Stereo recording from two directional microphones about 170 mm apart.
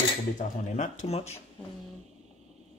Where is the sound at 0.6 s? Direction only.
45° left (ahead or behind).